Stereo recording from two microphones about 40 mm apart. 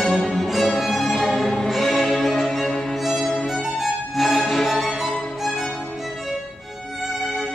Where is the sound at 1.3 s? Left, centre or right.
Centre.